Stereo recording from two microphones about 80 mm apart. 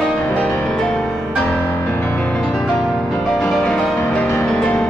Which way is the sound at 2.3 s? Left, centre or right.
Centre.